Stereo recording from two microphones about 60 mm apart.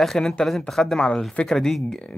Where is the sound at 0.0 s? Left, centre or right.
Centre.